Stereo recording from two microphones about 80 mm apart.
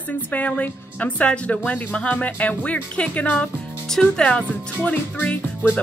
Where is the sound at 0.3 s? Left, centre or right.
Centre.